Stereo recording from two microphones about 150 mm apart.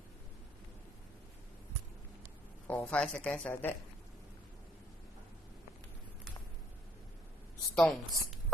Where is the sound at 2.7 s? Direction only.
10° left (ahead or behind).